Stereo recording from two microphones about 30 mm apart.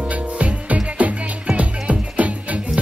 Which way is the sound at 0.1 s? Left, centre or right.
Right.